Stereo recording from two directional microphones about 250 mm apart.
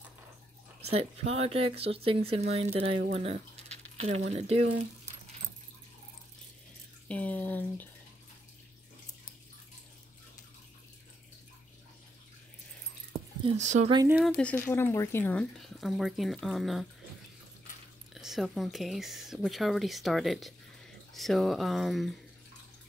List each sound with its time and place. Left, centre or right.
0.8 s speech: right
7.1 s speech: centre
13.4 s speech: right
13.9 s speech: centre
18.1 s speech: centre